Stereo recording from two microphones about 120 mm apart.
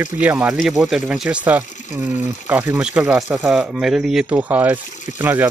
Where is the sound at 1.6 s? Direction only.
90° left.